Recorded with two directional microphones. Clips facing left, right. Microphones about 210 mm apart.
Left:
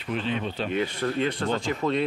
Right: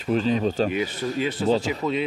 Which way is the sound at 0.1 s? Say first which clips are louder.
Right 7 dB; 40° right (ahead or behind).